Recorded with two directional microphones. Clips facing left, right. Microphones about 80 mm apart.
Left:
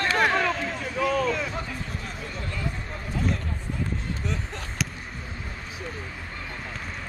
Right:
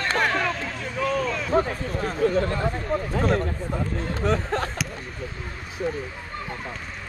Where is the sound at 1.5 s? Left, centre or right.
Right.